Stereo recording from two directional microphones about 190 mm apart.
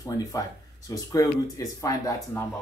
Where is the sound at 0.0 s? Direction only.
20° left (ahead or behind).